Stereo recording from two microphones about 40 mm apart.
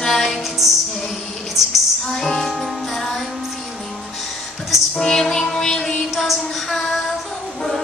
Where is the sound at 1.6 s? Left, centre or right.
Centre.